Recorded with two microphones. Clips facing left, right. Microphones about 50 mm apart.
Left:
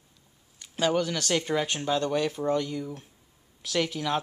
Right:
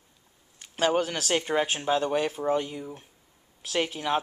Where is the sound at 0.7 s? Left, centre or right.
Right.